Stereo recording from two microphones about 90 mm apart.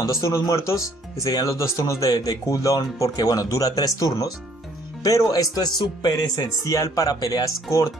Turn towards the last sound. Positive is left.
turn(degrees=35)  # may be behind; listen again after turning